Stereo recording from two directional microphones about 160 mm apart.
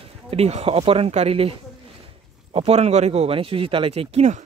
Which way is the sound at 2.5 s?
40° right (ahead or behind).